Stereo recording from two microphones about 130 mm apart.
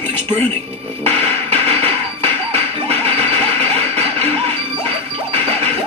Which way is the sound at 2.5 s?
50° right (ahead or behind).